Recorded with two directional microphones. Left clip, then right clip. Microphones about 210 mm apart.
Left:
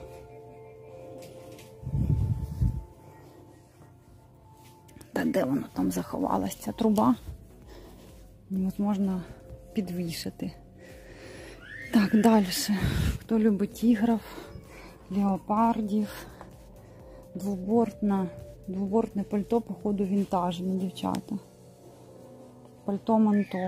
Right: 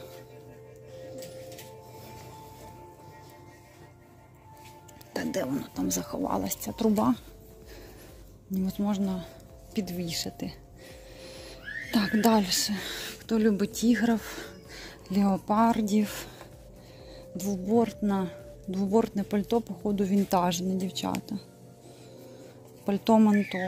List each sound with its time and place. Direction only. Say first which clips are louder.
5.1 s speech: left 4 dB; 20° left (ahead or behind)
8.5 s speech: even; 10° left (ahead or behind)
17.5 s speech: even; 10° left (ahead or behind)
22.8 s speech: right 2 dB; centre (ahead or behind)